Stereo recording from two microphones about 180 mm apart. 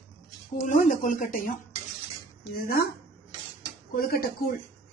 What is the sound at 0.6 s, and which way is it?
Speech, 45° left (ahead or behind).